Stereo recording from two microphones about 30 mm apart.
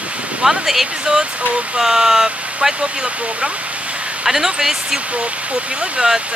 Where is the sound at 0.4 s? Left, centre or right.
Centre.